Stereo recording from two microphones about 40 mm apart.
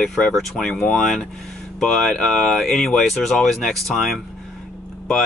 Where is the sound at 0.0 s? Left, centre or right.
Left; by 4.2 s centre.